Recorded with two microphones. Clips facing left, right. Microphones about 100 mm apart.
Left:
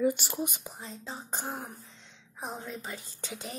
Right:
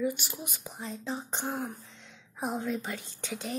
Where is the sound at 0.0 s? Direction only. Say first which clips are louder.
Left 4 dB; 35° left (ahead or behind).